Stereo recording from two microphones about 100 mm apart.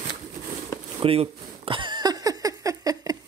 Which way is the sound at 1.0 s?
70° right (ahead or behind).